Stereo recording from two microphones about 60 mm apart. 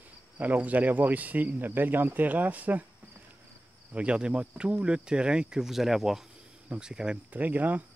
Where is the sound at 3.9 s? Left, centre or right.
Centre.